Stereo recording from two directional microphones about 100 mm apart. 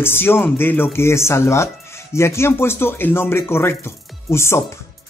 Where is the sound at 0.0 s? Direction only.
25° left (ahead or behind).